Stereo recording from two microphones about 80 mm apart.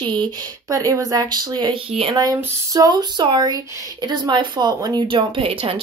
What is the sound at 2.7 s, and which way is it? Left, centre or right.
Speech, right.